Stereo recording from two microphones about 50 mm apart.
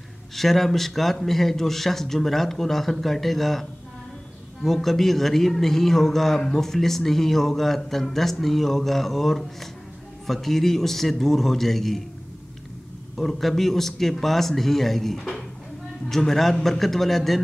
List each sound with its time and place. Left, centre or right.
0.4 s a man's voice: centre
13.1 s a man's voice: centre